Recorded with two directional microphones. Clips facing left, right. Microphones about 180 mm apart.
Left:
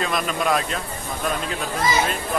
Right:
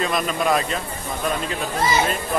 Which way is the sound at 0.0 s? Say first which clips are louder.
Right 1 dB; centre (ahead or behind).